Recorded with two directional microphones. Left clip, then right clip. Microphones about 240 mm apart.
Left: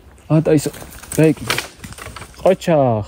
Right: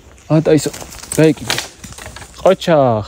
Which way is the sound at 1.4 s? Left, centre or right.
Right.